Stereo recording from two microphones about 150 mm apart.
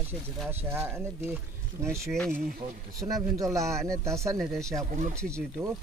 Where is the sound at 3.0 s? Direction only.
25° right (ahead or behind).